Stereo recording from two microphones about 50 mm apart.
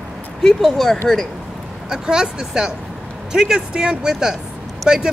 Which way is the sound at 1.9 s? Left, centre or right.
Centre.